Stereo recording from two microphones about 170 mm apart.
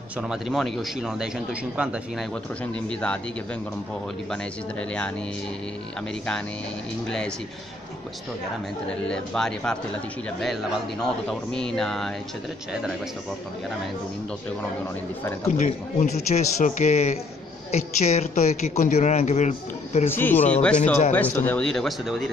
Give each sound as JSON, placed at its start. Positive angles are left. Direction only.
{"t": 0.3, "sound": "a man's voice", "side_deg": 0}
{"t": 2.6, "sound": "speech", "side_deg": 5}
{"t": 9.1, "sound": "a man's voice", "side_deg": 5}
{"t": 15.4, "sound": "speech", "side_deg": 45}
{"t": 20.1, "sound": "speech", "side_deg": 10}
{"t": 20.3, "sound": "speech", "side_deg": 40}
{"t": 20.6, "sound": "a man's voice", "side_deg": 5}